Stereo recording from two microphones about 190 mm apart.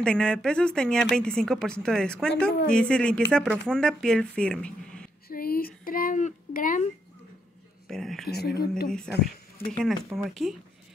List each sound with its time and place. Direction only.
0.0 s speech: 5° left (ahead or behind)
5.3 s speech: 50° left (ahead or behind)
7.9 s speech: centre (ahead or behind)